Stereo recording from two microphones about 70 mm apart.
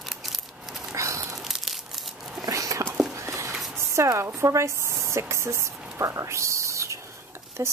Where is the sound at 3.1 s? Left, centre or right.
Right.